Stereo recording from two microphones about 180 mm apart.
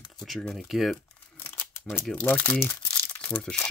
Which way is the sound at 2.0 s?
5° left (ahead or behind).